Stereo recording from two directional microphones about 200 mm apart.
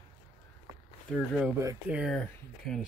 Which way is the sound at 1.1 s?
5° left (ahead or behind).